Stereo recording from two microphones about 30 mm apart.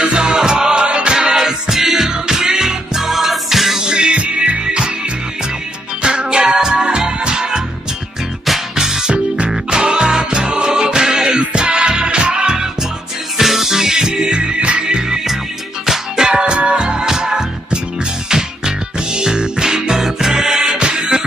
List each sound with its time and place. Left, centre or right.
0.0 s music: right
1.3 s music: centre
3.0 s music: centre
3.8 s music: right
6.0 s music: right
8.7 s music: centre; by 12.5 s right
13.4 s music: centre
14.1 s music: right
15.8 s music: centre
16.3 s music: right
19.6 s music: centre
20.8 s music: right